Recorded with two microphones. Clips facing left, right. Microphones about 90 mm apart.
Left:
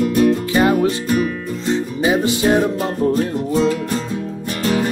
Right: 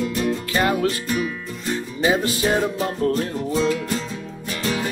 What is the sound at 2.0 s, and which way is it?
Music, 15° left (ahead or behind).